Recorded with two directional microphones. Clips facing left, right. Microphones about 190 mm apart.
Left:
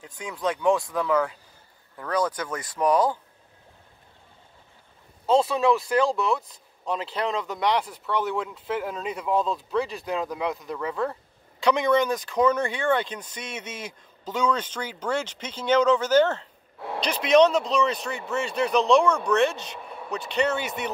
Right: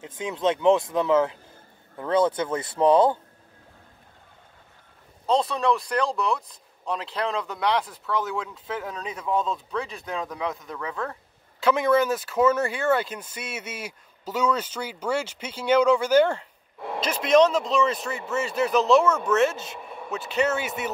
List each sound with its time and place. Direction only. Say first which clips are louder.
0.0 s speech: right 4 dB; 20° right (ahead or behind)
5.2 s speech: left 2 dB; 5° left (ahead or behind)